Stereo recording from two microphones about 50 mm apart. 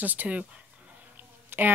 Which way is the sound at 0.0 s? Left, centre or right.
Right.